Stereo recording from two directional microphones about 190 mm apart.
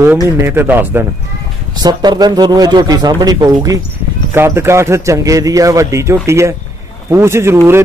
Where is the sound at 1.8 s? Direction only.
20° right (ahead or behind).